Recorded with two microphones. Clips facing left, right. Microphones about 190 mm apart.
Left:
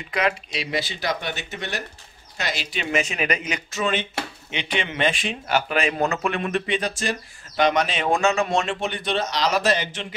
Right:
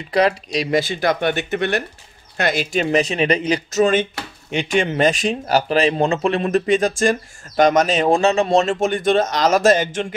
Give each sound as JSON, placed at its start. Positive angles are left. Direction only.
{"t": 0.1, "sound": "speech", "side_deg": -40}